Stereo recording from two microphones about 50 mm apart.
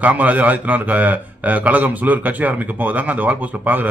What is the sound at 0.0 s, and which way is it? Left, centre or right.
A man's voice, right.